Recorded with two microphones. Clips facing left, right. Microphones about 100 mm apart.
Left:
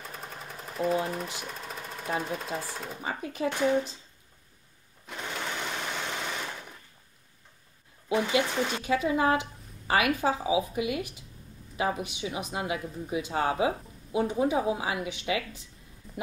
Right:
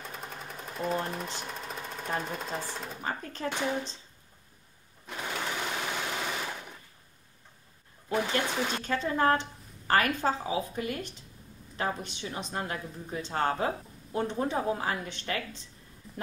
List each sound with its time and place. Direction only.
0.1 s speech: centre (ahead or behind)
5.0 s sewing machine: centre (ahead or behind)
8.3 s speech: 5° left (ahead or behind)